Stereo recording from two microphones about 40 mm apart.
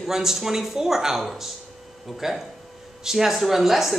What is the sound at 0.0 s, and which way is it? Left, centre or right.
A woman's voice, centre.